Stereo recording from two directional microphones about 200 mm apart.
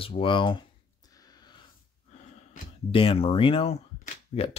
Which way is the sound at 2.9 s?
30° left (ahead or behind).